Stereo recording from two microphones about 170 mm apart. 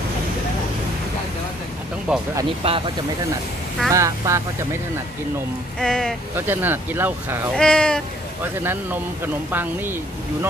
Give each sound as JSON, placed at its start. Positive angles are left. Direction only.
{"t": 2.1, "sound": "speech", "side_deg": -5}
{"t": 2.6, "sound": "speech", "side_deg": -35}
{"t": 3.9, "sound": "speech", "side_deg": -20}
{"t": 5.8, "sound": "speech", "side_deg": 5}
{"t": 6.3, "sound": "speech", "side_deg": -10}
{"t": 7.5, "sound": "speech", "side_deg": 5}
{"t": 8.6, "sound": "speech", "side_deg": -10}